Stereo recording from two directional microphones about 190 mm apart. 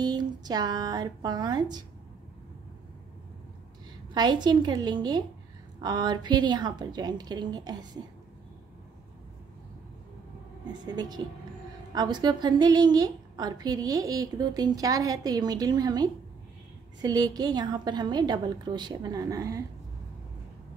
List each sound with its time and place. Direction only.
0.0 s a woman's voice: 20° right (ahead or behind)
4.1 s a woman's voice: 25° right (ahead or behind)
10.9 s a woman's voice: 20° right (ahead or behind)